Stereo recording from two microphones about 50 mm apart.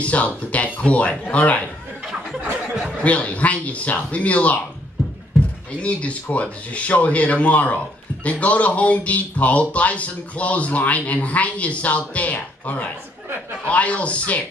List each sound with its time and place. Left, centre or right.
0.0 s speech: left
3.0 s speech: left
5.8 s speech: left